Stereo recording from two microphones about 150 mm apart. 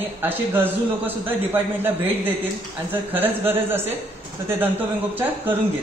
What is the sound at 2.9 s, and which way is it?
Speech, 15° right (ahead or behind).